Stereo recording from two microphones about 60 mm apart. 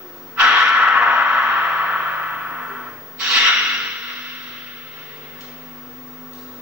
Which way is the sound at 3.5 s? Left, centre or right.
Centre.